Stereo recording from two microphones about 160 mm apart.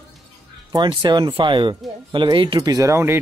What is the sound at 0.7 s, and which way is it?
Speech, 30° right (ahead or behind).